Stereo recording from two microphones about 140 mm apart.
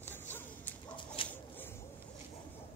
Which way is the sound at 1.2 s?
40° left (ahead or behind).